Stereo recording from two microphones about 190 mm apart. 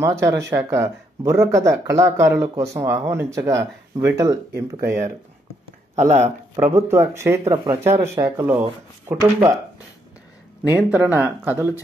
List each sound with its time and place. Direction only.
0.0 s speech: 15° right (ahead or behind)
4.7 s speech: 55° right (ahead or behind)
5.9 s speech: 40° right (ahead or behind)
6.7 s speech: 15° right (ahead or behind)
7.4 s speech: 25° right (ahead or behind)
7.8 s speech: 15° right (ahead or behind)
10.8 s speech: 10° right (ahead or behind)